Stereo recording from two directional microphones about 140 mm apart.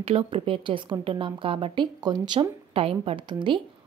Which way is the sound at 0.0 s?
40° right (ahead or behind).